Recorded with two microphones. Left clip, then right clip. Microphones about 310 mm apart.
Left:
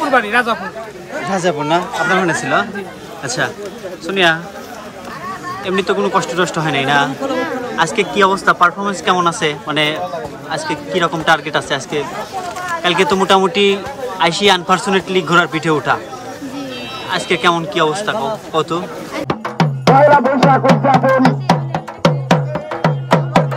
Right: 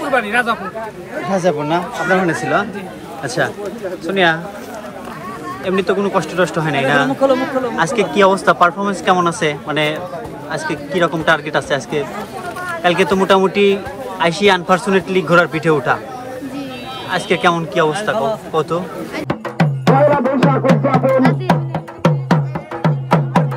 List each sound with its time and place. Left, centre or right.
0.1 s speech: centre
4.1 s a man's voice: centre
5.7 s a man's voice: centre
17.1 s speech: centre
19.9 s music: left